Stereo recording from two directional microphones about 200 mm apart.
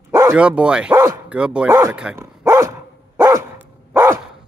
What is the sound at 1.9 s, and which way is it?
Dog, 5° right (ahead or behind).